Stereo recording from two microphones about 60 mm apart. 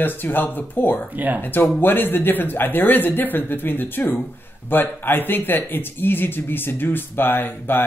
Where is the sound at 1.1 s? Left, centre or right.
Right.